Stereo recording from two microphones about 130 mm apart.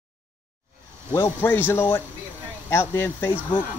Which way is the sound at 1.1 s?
20° left (ahead or behind).